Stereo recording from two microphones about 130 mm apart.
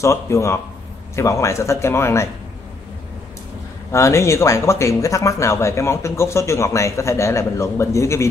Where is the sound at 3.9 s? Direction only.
20° left (ahead or behind).